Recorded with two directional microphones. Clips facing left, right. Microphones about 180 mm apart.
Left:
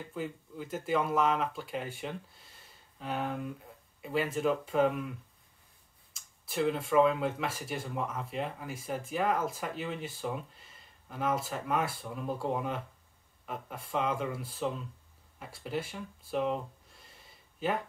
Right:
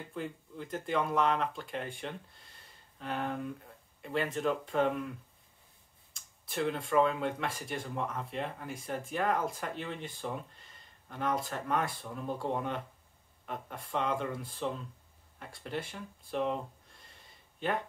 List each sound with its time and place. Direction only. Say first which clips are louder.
0.1 s speech: left 1 dB; 5° left (ahead or behind)
6.1 s speech: left 2 dB; centre (ahead or behind)